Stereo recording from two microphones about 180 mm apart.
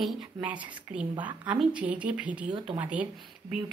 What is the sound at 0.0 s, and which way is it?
A woman's voice, 5° right (ahead or behind).